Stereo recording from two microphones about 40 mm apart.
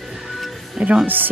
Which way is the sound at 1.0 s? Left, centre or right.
Right.